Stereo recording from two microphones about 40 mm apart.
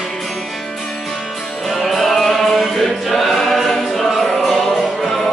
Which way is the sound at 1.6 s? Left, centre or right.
Centre.